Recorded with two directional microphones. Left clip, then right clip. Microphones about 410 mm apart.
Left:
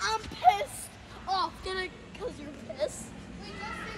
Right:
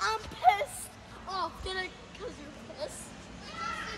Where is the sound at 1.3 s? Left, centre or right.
Centre.